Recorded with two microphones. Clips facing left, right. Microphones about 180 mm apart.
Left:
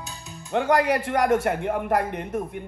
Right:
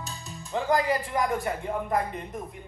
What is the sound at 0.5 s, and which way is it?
A man's voice, 70° left (ahead or behind).